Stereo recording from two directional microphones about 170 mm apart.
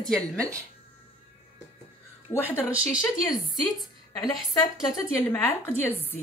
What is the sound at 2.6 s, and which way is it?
Speech, 10° right (ahead or behind).